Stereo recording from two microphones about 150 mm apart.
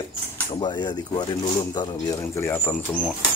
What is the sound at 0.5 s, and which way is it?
Speech, 30° left (ahead or behind).